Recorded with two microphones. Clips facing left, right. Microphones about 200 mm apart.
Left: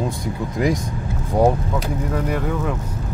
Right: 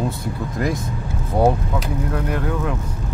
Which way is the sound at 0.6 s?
15° left (ahead or behind).